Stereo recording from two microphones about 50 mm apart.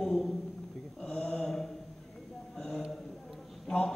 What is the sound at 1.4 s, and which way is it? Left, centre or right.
Mantra, centre.